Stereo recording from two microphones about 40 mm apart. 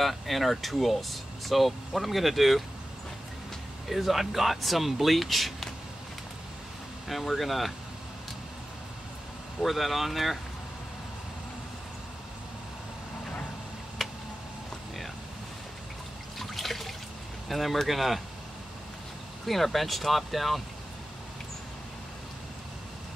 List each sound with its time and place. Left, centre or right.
0.0 s speech: centre
3.9 s speech: centre
7.1 s speech: centre
9.6 s speech: centre
16.3 s water: centre
17.5 s speech: centre
19.4 s speech: centre